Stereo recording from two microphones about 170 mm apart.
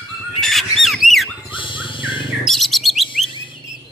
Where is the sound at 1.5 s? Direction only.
30° left (ahead or behind).